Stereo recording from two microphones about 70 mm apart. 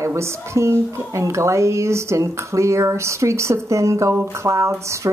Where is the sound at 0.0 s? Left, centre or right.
Right.